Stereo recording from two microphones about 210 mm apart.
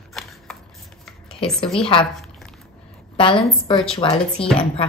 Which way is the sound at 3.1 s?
25° left (ahead or behind).